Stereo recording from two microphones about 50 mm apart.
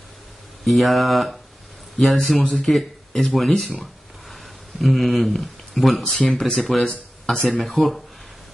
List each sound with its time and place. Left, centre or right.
0.7 s speech: centre
6.1 s speech: centre
6.4 s speech: centre